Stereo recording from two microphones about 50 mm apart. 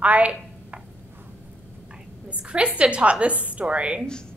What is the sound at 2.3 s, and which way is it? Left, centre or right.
A woman's voice, right.